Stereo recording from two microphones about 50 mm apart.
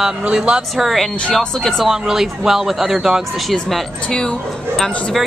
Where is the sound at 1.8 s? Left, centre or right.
Centre.